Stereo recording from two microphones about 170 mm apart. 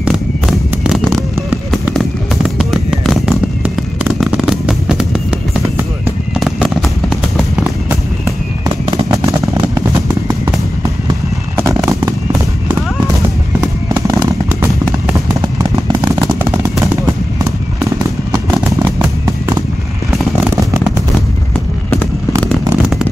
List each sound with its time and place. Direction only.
0.0 s a sound: 5° right (ahead or behind)
2.6 s fireworks: centre (ahead or behind)
6.4 s fireworks: centre (ahead or behind)
9.2 s vehicle: 20° right (ahead or behind)
10.8 s fireworks: 20° right (ahead or behind)
13.9 s fireworks: 20° right (ahead or behind)
16.8 s fireworks: 15° right (ahead or behind)
22.4 s fireworks: 5° left (ahead or behind)